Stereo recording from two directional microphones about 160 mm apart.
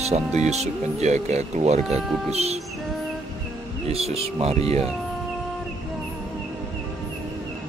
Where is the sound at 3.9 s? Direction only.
40° right (ahead or behind).